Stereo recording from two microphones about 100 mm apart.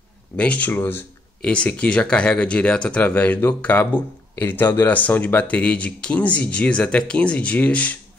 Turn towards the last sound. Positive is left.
turn(degrees=15)  # may be behind; listen again after turning